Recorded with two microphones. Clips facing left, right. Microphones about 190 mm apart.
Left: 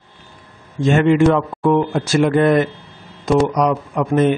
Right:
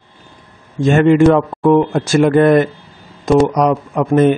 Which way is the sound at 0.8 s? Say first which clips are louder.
Right 3 dB; 45° right (ahead or behind).